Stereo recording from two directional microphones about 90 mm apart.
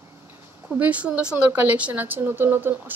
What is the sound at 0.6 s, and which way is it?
Speech, 15° right (ahead or behind).